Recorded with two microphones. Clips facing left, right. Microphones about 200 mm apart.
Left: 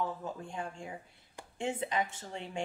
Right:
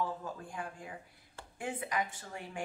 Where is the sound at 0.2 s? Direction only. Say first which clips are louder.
Left 2 dB; 25° left (ahead or behind).